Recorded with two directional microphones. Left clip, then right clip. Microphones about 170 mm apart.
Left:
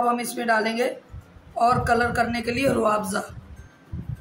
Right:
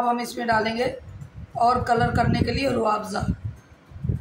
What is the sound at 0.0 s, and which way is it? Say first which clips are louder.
A man's voice: left 1 dB; 15° left (ahead or behind).